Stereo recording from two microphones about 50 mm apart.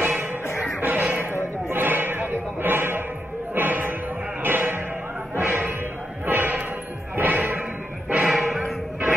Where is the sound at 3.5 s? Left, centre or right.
Right.